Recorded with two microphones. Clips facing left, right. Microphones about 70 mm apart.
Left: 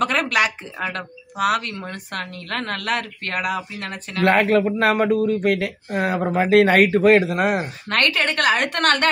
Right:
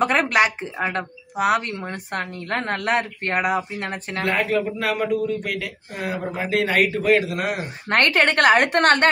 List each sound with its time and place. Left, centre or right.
0.0 s speech: right
4.2 s speech: left
7.2 s speech: left
7.9 s a woman's voice: right